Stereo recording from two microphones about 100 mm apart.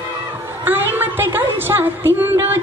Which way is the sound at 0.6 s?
20° right (ahead or behind).